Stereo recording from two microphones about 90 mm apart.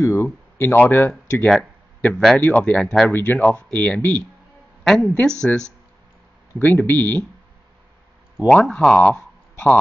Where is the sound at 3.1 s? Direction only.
25° left (ahead or behind).